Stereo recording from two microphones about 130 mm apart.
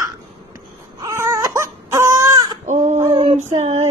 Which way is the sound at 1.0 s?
20° right (ahead or behind).